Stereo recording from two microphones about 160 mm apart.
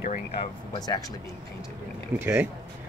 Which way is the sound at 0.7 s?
25° left (ahead or behind).